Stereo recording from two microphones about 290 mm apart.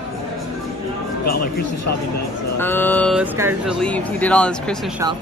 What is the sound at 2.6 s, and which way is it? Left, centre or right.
Speech, centre.